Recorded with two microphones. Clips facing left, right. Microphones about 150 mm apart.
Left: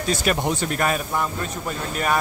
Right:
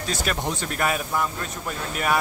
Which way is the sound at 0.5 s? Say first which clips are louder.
Left 3 dB; centre (ahead or behind).